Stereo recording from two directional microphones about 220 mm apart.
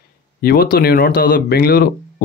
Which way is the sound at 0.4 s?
45° left (ahead or behind).